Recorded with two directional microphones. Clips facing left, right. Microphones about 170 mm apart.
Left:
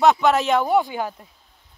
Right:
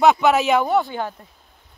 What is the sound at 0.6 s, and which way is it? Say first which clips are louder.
Speech: even; 10° left (ahead or behind).